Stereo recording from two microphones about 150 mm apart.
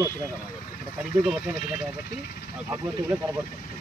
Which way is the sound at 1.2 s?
10° right (ahead or behind).